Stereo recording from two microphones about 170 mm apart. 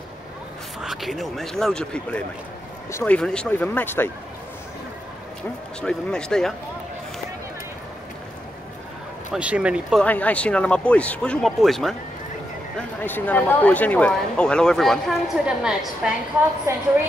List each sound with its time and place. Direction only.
0.7 s speech: centre (ahead or behind)
5.8 s speech: 5° left (ahead or behind)
9.3 s speech: 5° right (ahead or behind)
10.0 s speech: 10° left (ahead or behind)
16.7 s speech: 15° right (ahead or behind)